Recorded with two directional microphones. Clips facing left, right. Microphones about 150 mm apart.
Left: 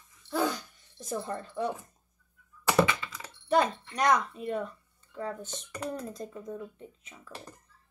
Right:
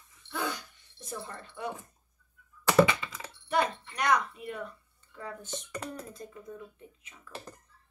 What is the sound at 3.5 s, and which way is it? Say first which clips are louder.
Speech: left 3 dB; 35° left (ahead or behind).